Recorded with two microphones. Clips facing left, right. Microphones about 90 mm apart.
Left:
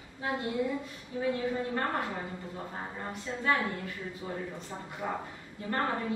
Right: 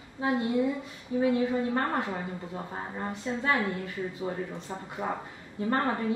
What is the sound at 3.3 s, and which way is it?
Speech, 45° right (ahead or behind).